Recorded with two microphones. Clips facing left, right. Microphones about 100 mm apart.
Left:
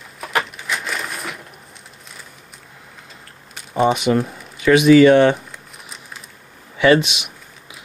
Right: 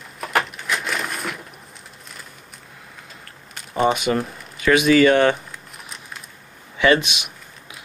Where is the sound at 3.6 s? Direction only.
Centre (ahead or behind).